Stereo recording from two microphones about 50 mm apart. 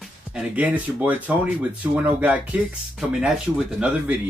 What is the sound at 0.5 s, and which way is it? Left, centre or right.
Speech, right.